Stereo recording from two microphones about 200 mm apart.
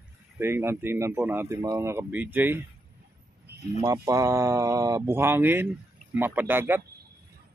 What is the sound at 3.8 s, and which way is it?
Speech, 20° right (ahead or behind).